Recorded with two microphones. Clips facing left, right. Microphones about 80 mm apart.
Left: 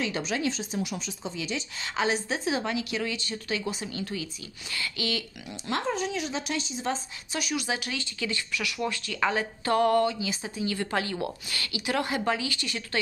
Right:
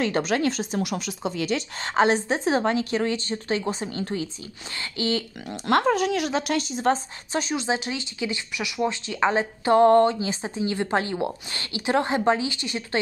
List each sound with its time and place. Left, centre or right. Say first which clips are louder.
0.0 s speech: right 6 dB; right
1.9 s speech: right 7 dB; right
5.5 s speech: right 9 dB; right
7.3 s speech: right 5 dB; right